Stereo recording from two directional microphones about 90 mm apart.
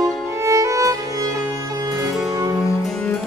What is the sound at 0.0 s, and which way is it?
Music, 35° right (ahead or behind).